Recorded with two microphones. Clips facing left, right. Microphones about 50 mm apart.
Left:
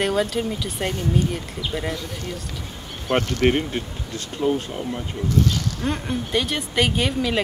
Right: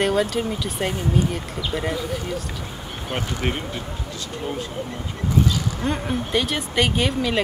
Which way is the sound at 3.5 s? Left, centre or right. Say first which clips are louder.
Left 6 dB; left.